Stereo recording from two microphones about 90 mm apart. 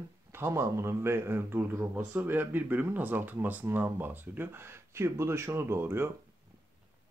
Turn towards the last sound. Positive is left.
turn(degrees=-25)  # may be behind; listen again after turning